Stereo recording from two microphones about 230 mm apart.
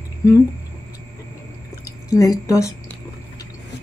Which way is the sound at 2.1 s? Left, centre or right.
Centre.